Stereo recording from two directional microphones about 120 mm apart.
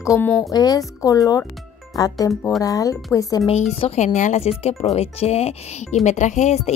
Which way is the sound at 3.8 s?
60° left (ahead or behind).